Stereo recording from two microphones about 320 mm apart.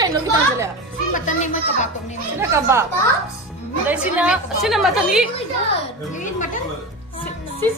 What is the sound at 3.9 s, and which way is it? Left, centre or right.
A woman's voice, centre.